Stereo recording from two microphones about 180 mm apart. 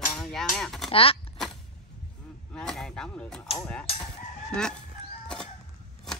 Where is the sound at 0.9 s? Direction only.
30° left (ahead or behind).